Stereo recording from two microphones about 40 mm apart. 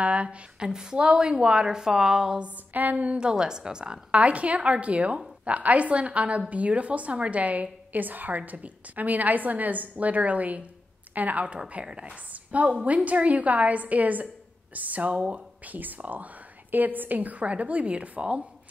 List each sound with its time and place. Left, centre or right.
0.0 s speech: right
0.7 s a woman's voice: centre
2.7 s a woman's voice: right
3.1 s a woman's voice: right
4.2 s a woman's voice: right
8.4 s a woman's voice: right
11.8 s a woman's voice: right
12.3 s a sound: right
12.8 s a woman's voice: right
17.4 s speech: right